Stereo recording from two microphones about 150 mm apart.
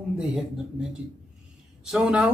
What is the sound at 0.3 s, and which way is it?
Speech, 5° right (ahead or behind).